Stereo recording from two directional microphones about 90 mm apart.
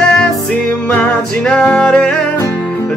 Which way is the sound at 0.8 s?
10° left (ahead or behind).